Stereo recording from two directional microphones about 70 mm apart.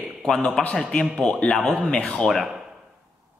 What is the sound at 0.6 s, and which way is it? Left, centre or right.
A man's voice, centre.